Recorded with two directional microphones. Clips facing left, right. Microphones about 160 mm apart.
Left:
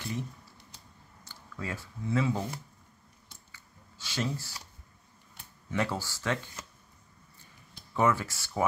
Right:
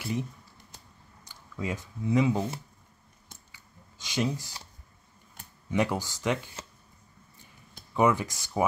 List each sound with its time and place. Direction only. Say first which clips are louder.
1.2 s speech: right 5 dB; 15° right (ahead or behind)
3.5 s a sound: right 1 dB; 15° right (ahead or behind)
5.7 s speech: right 4 dB; 15° right (ahead or behind)
7.9 s speech: right 3 dB; 15° right (ahead or behind)